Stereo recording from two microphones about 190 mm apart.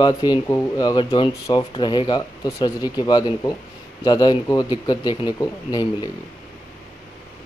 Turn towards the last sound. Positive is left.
turn(degrees=20)  # may be behind; listen again after turning